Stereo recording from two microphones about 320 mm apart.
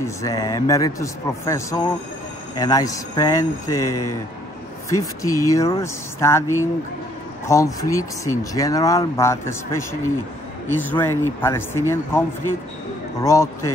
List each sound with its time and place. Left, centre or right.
0.0 s speech: centre
3.9 s speech: left
4.8 s speech: centre
7.4 s speech: centre